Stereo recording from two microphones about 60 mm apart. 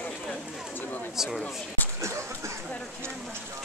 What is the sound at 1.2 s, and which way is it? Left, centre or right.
Speech, centre.